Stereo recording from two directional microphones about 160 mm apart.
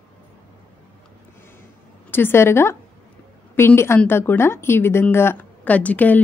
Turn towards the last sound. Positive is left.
turn(degrees=10)  # may be behind; listen again after turning